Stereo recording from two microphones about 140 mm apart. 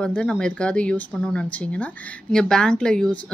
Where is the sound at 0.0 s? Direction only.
5° left (ahead or behind).